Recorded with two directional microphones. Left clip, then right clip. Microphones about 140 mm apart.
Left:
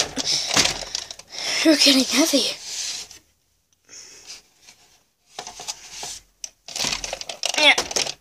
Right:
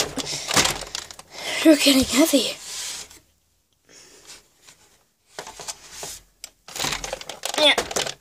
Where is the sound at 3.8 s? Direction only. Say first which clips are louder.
Left 5 dB; 20° right (ahead or behind).